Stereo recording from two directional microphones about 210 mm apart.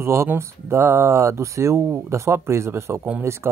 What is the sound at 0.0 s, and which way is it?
Speech, 10° right (ahead or behind).